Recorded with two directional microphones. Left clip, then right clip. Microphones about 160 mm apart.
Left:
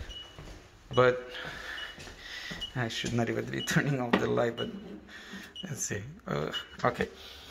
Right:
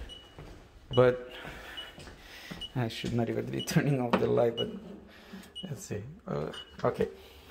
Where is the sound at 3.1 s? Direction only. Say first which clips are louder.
Even; 20° right (ahead or behind).